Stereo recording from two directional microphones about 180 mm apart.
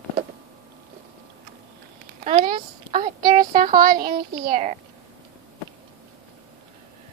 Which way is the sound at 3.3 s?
50° right (ahead or behind).